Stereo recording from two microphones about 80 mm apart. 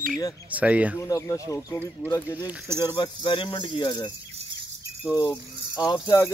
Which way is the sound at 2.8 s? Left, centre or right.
Left.